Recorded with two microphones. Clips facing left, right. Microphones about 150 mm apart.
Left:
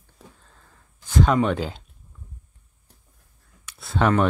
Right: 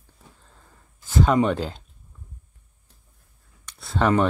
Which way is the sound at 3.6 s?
5° left (ahead or behind).